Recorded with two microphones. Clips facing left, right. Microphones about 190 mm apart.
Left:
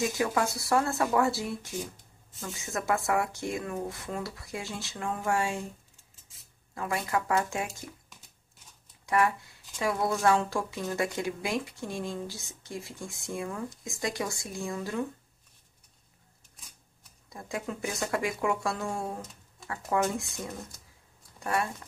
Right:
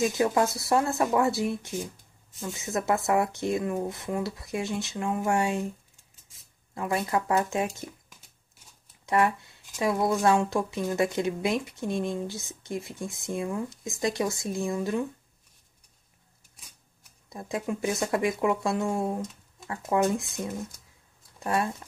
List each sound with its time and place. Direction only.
0.2 s speech: 25° right (ahead or behind)
6.7 s speech: 25° right (ahead or behind)
9.0 s speech: 25° right (ahead or behind)
17.3 s speech: 20° right (ahead or behind)